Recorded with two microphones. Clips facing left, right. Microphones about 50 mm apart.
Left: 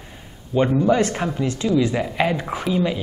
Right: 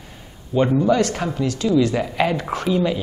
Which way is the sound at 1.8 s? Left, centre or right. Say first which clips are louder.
Right 1 dB; centre.